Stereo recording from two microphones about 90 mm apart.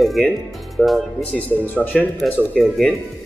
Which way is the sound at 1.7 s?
15° left (ahead or behind).